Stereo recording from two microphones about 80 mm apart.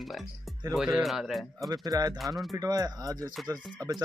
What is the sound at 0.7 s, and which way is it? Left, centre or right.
Speech, centre.